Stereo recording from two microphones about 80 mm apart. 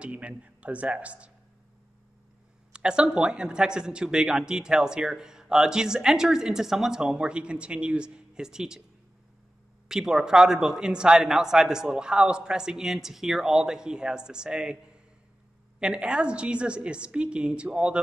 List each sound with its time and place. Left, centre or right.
0.0 s speech: centre
2.7 s speech: centre
9.8 s speech: centre
15.8 s speech: centre